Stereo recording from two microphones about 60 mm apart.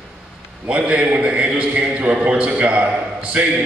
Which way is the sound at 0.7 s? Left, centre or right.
Right.